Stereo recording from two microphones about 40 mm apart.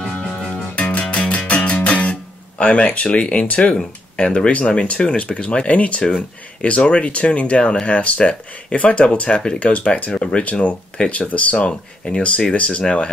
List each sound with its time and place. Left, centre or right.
0.1 s music: centre
0.7 s music: left
1.9 s speech: left; by 4.5 s centre
4.6 s speech: left